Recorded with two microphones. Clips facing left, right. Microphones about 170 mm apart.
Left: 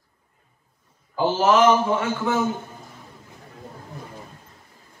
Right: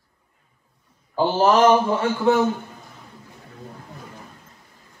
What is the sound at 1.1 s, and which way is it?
Speech, 35° right (ahead or behind).